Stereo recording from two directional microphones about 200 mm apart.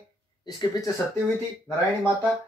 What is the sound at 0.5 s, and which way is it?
Speech, 15° left (ahead or behind).